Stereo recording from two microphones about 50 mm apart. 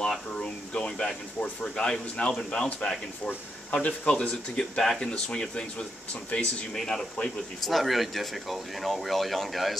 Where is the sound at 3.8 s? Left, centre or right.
Left.